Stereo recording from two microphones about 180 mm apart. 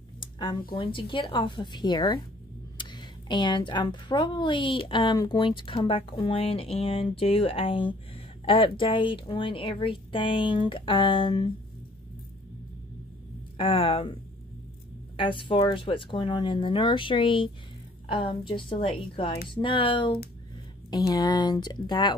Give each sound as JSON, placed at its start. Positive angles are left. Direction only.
{"t": 0.2, "sound": "a sound", "side_deg": 25}
{"t": 0.7, "sound": "speech", "side_deg": 30}
{"t": 13.6, "sound": "speech", "side_deg": 30}